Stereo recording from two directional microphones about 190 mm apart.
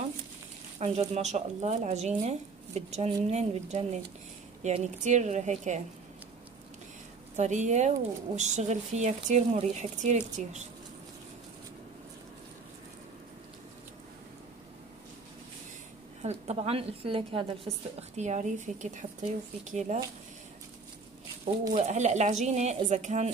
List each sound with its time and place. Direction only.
0.7 s a woman's voice: 35° right (ahead or behind)
7.3 s a woman's voice: 40° right (ahead or behind)
16.2 s a woman's voice: 35° right (ahead or behind)
21.7 s a woman's voice: 40° right (ahead or behind)